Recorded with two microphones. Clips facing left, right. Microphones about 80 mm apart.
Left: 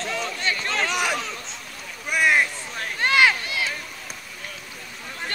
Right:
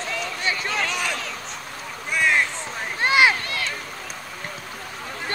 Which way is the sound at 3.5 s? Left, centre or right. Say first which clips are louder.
Left 1 dB; centre.